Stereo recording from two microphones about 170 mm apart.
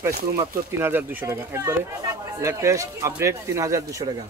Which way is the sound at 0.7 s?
15° right (ahead or behind).